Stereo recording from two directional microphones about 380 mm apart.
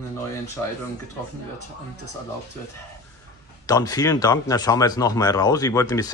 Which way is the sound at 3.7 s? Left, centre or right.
Centre.